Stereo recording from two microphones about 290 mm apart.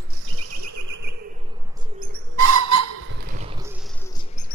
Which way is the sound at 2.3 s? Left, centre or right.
Right.